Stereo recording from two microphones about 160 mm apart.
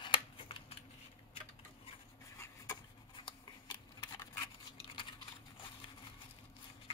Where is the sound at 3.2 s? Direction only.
30° left (ahead or behind).